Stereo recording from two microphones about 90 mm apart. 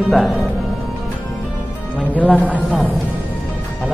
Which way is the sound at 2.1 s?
15° left (ahead or behind).